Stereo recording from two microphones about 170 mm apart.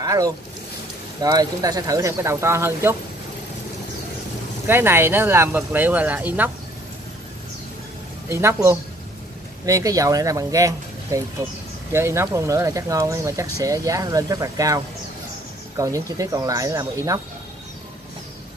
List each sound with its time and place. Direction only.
0.0 s speech: 20° right (ahead or behind)
4.6 s speech: 15° right (ahead or behind)
8.3 s speech: 15° right (ahead or behind)
9.7 s speech: 20° right (ahead or behind)
15.8 s speech: 20° right (ahead or behind)